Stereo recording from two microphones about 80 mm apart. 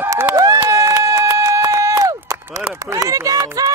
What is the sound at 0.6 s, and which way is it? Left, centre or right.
Run, right.